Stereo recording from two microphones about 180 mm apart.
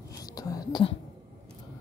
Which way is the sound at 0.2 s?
20° left (ahead or behind).